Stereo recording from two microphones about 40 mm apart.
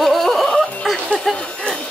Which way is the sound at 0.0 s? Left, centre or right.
Centre.